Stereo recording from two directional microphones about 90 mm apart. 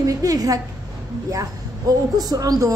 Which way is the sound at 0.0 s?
40° right (ahead or behind).